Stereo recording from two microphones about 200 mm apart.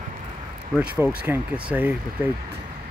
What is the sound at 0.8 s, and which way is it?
Speech, 10° right (ahead or behind).